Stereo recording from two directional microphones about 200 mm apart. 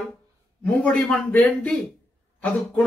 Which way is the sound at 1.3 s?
5° left (ahead or behind).